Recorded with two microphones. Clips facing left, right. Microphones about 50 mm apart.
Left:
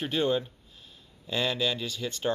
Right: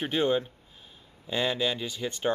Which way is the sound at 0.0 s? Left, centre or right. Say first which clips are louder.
Right 1 dB; centre.